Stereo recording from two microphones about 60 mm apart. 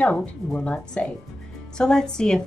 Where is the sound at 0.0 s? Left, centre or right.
Left.